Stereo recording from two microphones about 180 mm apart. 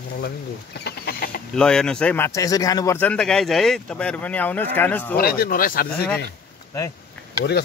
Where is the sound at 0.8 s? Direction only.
60° left (ahead or behind).